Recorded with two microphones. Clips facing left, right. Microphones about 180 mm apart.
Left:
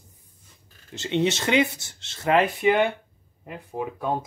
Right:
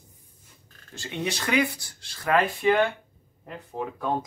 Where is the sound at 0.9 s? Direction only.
20° left (ahead or behind).